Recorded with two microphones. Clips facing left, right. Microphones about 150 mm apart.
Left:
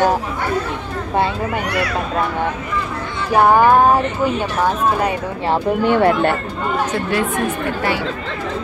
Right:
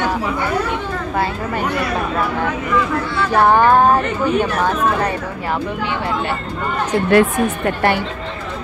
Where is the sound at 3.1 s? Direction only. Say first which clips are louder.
Left 1 dB; 15° left (ahead or behind).